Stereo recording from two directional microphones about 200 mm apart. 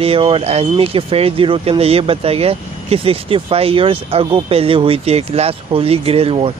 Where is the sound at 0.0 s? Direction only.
25° right (ahead or behind).